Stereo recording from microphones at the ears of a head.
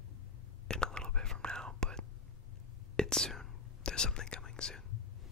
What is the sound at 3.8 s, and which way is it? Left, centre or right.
Whispering, left.